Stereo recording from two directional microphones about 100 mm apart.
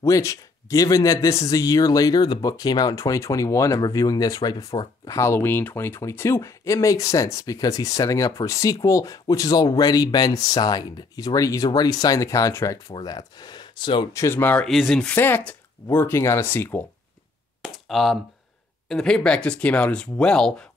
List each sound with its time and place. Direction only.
0.0 s a man's voice: 30° left (ahead or behind); by 14.0 s 50° left (ahead or behind)
14.1 s speech: 30° left (ahead or behind)
14.4 s speech: 15° left (ahead or behind)
14.7 s speech: centre (ahead or behind)
15.0 s speech: 20° left (ahead or behind)
17.6 s a sound: centre (ahead or behind)
18.9 s speech: 5° left (ahead or behind)